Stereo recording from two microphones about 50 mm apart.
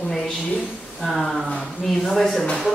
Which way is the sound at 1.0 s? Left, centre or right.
Centre.